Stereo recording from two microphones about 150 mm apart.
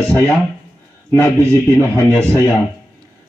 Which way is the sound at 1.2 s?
15° left (ahead or behind).